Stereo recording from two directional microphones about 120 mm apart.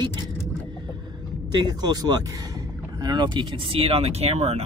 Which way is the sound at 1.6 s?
35° right (ahead or behind).